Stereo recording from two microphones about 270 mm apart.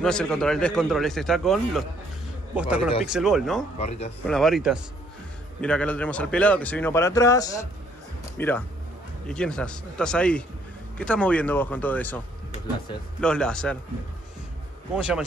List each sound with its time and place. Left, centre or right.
0.0 s a man's voice: centre
3.7 s speech: left
4.3 s a man's voice: centre
13.2 s a man's voice: centre
15.0 s a man's voice: centre